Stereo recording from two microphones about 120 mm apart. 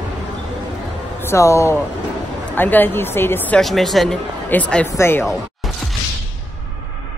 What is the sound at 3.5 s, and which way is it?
A man's voice, centre (ahead or behind).